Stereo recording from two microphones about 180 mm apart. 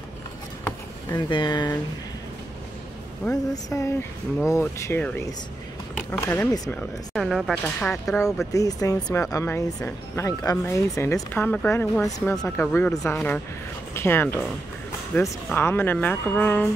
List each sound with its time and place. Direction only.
1.1 s speech: 25° left (ahead or behind)
3.3 s speech: 15° left (ahead or behind)
6.7 s speech: 5° left (ahead or behind)
8.5 s speech: 20° left (ahead or behind)